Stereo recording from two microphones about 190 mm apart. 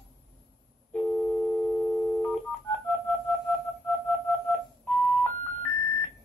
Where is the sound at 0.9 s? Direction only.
10° left (ahead or behind).